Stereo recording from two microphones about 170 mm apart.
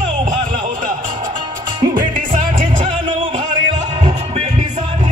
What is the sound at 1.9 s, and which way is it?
Music, 50° right (ahead or behind).